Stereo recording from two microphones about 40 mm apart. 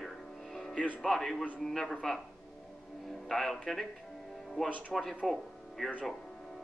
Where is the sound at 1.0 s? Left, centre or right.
Centre.